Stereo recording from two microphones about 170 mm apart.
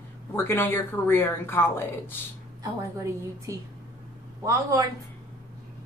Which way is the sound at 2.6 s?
20° right (ahead or behind).